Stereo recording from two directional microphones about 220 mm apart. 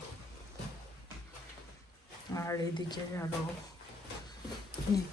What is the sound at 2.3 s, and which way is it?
Speech, 15° left (ahead or behind).